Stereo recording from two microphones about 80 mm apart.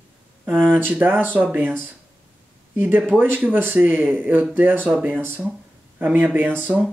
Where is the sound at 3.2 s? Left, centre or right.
Right.